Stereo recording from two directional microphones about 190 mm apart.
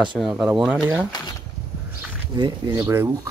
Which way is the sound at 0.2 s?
5° right (ahead or behind).